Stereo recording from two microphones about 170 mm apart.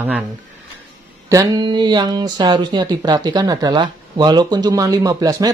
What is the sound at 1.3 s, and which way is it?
Speech, 20° right (ahead or behind).